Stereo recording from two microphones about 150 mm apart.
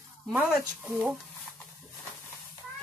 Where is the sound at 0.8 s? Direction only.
5° right (ahead or behind).